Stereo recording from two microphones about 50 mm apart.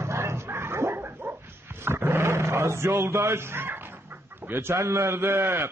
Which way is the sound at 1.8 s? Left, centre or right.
Right.